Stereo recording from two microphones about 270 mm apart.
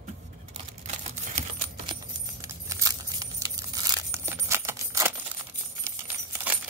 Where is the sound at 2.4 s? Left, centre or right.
Centre.